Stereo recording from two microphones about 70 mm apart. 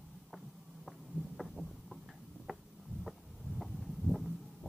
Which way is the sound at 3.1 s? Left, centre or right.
Centre.